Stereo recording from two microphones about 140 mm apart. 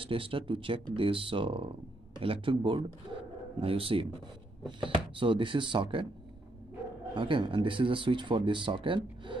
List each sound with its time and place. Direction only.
0.0 s speech: 40° right (ahead or behind)
7.2 s speech: 35° right (ahead or behind)